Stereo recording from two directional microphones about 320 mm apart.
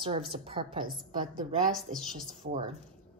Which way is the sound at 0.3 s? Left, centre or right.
Centre.